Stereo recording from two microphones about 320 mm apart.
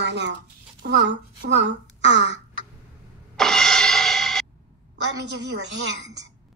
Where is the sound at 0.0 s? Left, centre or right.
Right.